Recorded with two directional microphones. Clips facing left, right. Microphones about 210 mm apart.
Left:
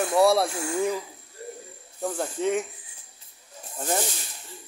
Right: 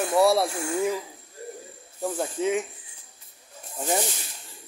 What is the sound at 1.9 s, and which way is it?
Speech, 5° right (ahead or behind).